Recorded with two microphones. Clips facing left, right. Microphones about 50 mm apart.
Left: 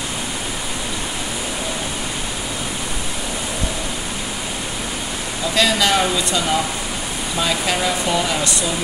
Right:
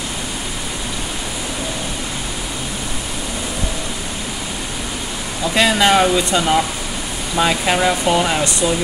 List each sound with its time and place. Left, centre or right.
5.5 s speech: right